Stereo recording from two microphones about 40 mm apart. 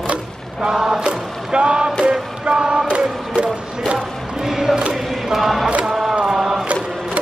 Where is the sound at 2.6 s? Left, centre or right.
Centre.